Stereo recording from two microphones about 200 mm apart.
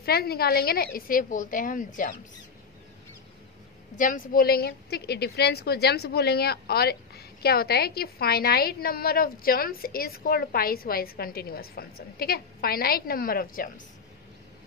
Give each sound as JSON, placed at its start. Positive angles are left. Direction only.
{"t": 0.0, "sound": "a woman's voice", "side_deg": 50}
{"t": 3.9, "sound": "a woman's voice", "side_deg": 40}